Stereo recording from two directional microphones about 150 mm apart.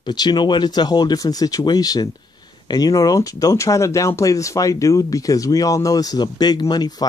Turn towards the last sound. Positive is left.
turn(degrees=25)  # may be behind; listen again after turning